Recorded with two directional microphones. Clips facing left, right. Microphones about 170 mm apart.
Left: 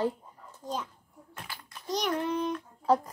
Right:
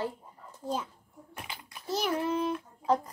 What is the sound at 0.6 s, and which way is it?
Speech, 10° right (ahead or behind).